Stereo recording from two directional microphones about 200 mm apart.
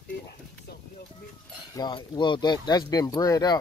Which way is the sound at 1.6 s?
20° left (ahead or behind).